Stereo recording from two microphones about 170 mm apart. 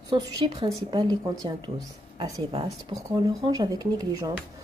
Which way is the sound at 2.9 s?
20° right (ahead or behind).